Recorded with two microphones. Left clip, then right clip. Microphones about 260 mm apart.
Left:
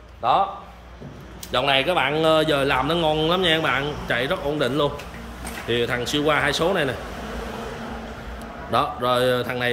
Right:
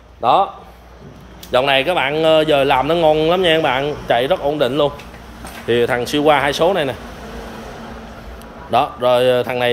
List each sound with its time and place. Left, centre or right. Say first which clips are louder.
0.2 s a man's voice: right 6 dB; right
1.5 s speech: right 5 dB; centre
8.7 s speech: right 7 dB; centre